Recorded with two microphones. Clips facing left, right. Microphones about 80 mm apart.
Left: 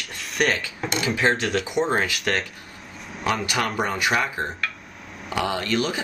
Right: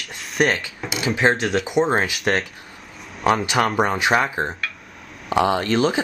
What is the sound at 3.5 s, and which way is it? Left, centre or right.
Speech, right.